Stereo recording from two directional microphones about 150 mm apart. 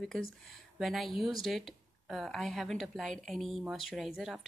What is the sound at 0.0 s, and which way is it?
Speech, centre (ahead or behind).